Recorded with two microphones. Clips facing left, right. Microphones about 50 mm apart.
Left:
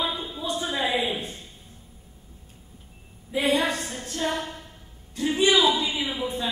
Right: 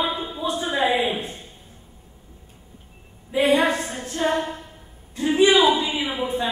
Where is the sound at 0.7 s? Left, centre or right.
Right.